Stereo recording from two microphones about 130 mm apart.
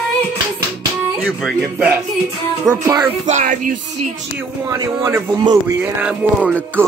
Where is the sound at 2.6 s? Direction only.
25° right (ahead or behind).